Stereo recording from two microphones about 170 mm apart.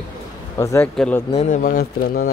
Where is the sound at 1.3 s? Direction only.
45° left (ahead or behind); by 2.2 s 60° left (ahead or behind).